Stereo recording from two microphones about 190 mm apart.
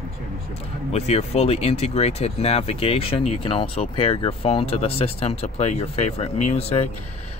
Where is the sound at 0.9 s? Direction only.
35° left (ahead or behind).